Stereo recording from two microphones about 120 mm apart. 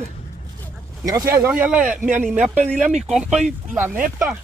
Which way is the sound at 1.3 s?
20° right (ahead or behind).